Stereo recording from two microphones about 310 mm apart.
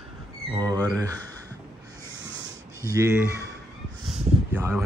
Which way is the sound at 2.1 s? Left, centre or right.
Right.